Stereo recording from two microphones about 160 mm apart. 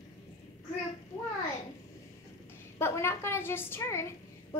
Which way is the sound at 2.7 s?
15° left (ahead or behind).